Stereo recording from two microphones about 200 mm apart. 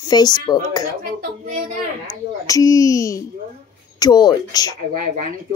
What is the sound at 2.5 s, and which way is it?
Speech, 15° left (ahead or behind).